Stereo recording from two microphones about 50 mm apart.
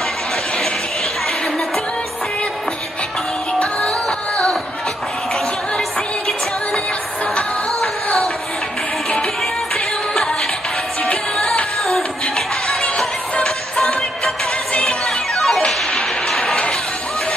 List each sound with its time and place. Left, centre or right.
3.5 s music: centre
5.8 s music: centre
9.1 s music: centre
11.8 s music: centre
13.8 s music: centre
15.8 s a sound: centre